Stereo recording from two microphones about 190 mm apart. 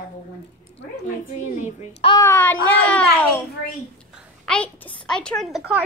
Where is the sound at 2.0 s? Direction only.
15° left (ahead or behind).